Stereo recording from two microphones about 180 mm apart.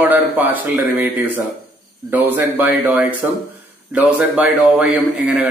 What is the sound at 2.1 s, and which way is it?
A man's voice, 10° right (ahead or behind).